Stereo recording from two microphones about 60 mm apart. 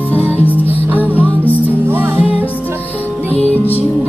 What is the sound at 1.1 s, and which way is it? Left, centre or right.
Music, left.